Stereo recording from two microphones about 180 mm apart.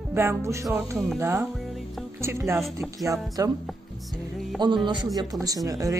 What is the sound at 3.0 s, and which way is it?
Speech, 20° right (ahead or behind).